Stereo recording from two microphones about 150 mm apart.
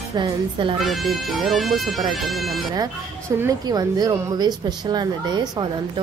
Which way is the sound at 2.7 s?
20° right (ahead or behind).